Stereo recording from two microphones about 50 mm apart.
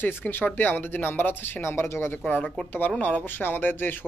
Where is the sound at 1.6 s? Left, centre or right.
Left.